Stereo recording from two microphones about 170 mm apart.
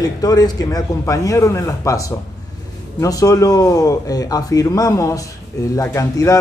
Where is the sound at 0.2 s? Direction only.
20° left (ahead or behind).